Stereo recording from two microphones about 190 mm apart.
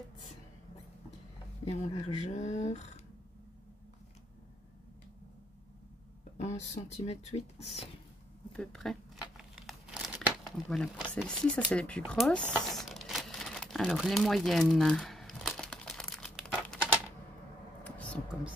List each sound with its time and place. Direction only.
1.6 s speech: 35° left (ahead or behind)
6.3 s speech: 35° left (ahead or behind)
8.5 s crumpling: centre (ahead or behind)
10.2 s speech: 5° left (ahead or behind)
12.6 s crumpling: centre (ahead or behind)
17.8 s a sound: 5° left (ahead or behind)